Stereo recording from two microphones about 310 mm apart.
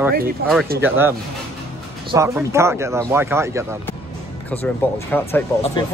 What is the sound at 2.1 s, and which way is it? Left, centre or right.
Speech, centre.